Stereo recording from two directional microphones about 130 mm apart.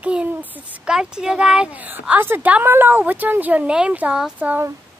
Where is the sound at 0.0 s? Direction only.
10° right (ahead or behind).